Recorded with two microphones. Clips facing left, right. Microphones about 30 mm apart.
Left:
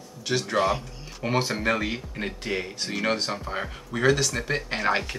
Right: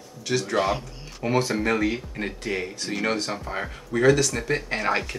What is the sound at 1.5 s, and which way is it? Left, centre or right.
Speech, centre.